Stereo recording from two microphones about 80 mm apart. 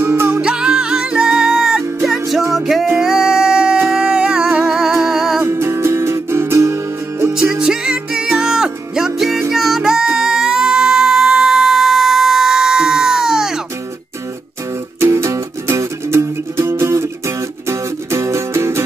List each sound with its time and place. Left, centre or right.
0.0 s music: right
0.4 s music: centre
5.4 s music: right
7.3 s music: centre
15.0 s music: right